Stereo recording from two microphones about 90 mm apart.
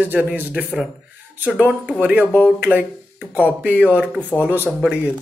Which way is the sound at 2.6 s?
20° right (ahead or behind).